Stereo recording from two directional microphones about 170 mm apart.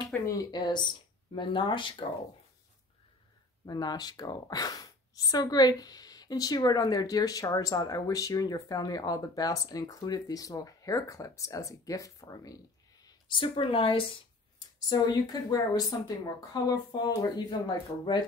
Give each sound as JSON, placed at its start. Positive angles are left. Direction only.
{"t": 0.3, "sound": "a woman's voice", "side_deg": 20}
{"t": 3.6, "sound": "a woman's voice", "side_deg": 25}